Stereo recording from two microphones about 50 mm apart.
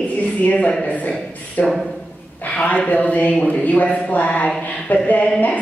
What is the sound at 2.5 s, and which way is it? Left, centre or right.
Speech, left.